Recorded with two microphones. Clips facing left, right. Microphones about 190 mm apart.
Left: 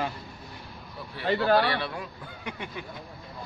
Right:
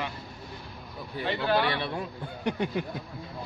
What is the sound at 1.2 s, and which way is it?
Speech, 40° left (ahead or behind).